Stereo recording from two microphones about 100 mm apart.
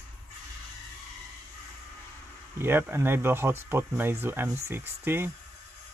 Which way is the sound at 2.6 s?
25° right (ahead or behind).